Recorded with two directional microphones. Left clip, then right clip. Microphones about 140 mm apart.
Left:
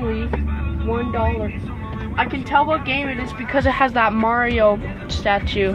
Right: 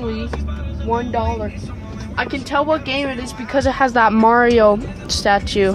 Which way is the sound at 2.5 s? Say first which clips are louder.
Even; 50° right (ahead or behind).